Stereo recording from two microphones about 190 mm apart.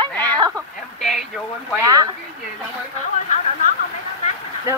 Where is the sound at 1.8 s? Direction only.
20° right (ahead or behind).